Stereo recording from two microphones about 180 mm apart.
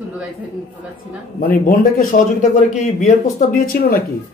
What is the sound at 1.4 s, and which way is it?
A man's voice, 55° left (ahead or behind).